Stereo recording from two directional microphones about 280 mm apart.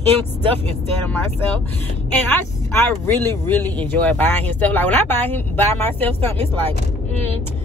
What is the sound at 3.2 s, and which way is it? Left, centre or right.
Speech, centre.